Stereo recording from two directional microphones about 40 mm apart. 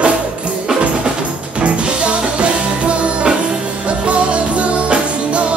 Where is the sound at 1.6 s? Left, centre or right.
Right.